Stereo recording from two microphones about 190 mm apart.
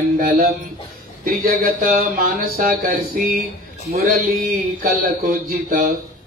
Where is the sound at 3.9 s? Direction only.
55° right (ahead or behind).